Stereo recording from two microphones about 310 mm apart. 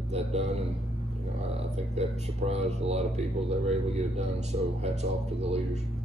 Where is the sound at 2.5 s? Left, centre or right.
Right.